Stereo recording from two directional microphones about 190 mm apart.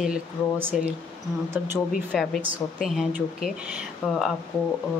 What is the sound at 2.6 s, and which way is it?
Speech, 20° left (ahead or behind).